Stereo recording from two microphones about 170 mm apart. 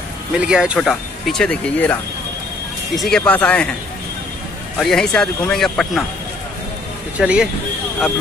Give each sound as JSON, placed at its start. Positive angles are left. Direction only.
{"t": 0.4, "sound": "speech", "side_deg": -5}
{"t": 3.0, "sound": "speech", "side_deg": 5}
{"t": 4.7, "sound": "speech", "side_deg": 5}
{"t": 7.2, "sound": "speech", "side_deg": -5}